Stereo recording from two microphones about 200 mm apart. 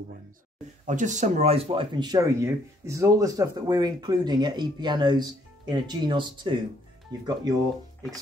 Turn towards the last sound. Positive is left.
turn(degrees=-20)  # may be behind; listen again after turning